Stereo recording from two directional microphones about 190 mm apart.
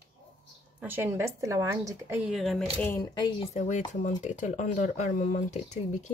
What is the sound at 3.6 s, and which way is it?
Speech, 40° left (ahead or behind).